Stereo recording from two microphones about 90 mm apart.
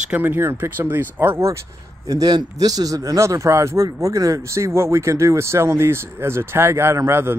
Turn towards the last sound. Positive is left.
turn(degrees=-30)  # may be behind; listen again after turning